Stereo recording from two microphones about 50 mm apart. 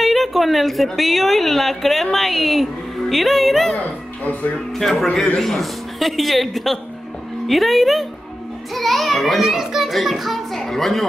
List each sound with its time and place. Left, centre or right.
0.0 s a sound: centre
0.9 s a woman's voice: centre
3.8 s speech: left
4.7 s a woman's voice: centre